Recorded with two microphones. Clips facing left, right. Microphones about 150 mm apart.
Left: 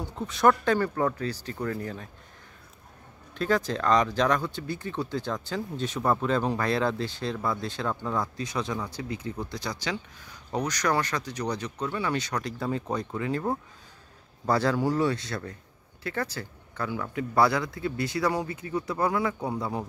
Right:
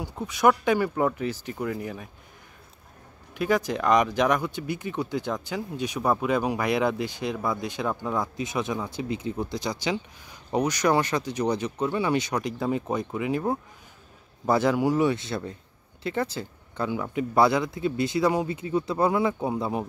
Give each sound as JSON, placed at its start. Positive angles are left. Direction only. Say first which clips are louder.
{"t": 0.0, "sound": "speech", "louder": "right 1 dB", "side_deg": -10}
{"t": 3.3, "sound": "speech", "louder": "right 2 dB", "side_deg": -15}